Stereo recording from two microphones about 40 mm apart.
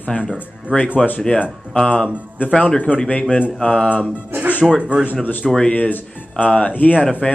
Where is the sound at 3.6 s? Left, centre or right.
Left.